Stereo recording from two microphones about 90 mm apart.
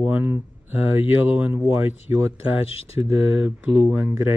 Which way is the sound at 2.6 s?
90° left.